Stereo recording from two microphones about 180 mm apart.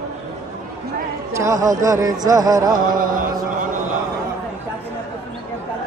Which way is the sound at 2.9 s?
50° right (ahead or behind).